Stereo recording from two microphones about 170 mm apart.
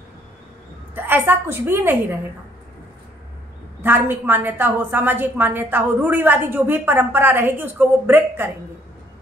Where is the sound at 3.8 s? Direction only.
10° right (ahead or behind).